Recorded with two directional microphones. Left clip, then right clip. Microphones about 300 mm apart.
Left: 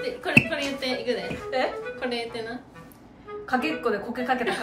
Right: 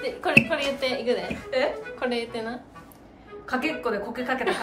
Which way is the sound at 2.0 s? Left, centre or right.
Centre.